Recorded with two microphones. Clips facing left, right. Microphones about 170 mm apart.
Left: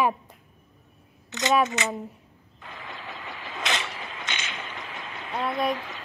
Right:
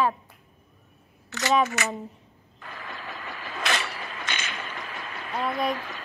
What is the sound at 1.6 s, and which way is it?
Speech, 20° left (ahead or behind).